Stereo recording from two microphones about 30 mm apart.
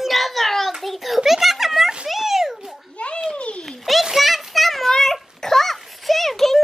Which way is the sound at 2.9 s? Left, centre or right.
Left.